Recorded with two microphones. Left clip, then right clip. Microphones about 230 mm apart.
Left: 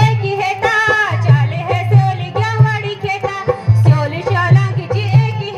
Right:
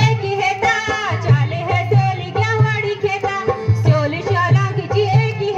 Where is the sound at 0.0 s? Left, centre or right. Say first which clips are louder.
Left 1 dB; left.